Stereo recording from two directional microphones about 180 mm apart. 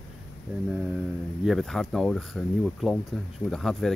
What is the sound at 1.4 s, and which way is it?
Speech, centre (ahead or behind).